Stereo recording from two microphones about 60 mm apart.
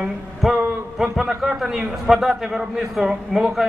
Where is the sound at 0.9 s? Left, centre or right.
Centre.